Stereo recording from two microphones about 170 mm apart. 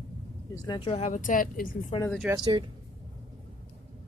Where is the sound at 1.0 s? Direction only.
50° left (ahead or behind).